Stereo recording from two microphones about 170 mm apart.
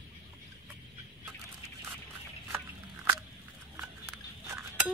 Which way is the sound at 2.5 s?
10° right (ahead or behind).